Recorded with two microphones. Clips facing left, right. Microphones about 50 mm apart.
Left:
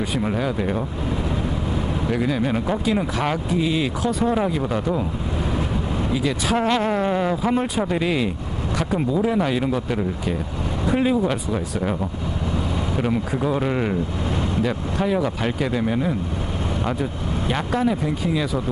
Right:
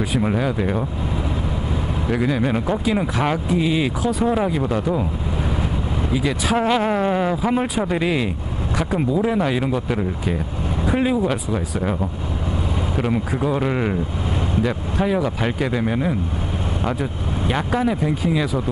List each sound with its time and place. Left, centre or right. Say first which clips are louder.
0.0 s speech: right 2 dB; centre
2.0 s speech: right 2 dB; centre
6.1 s speech: right 2 dB; centre